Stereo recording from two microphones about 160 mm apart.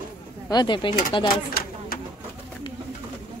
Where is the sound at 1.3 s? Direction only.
70° left (ahead or behind).